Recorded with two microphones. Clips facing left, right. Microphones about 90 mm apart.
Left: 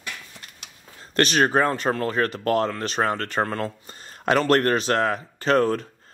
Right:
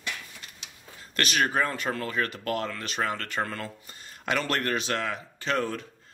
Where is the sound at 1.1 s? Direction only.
35° left (ahead or behind).